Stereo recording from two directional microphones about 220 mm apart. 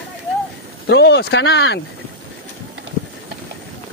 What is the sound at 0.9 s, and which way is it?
Speech, 50° left (ahead or behind).